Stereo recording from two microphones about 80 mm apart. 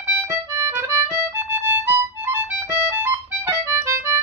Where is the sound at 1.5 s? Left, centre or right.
Right.